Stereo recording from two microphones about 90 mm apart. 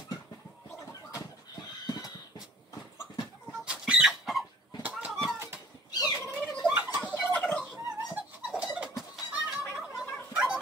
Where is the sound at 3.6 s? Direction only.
5° right (ahead or behind).